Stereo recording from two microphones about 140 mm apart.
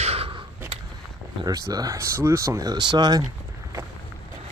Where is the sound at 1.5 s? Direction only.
25° right (ahead or behind).